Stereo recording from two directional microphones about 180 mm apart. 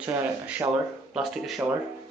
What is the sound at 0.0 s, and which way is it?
Speech, 10° right (ahead or behind).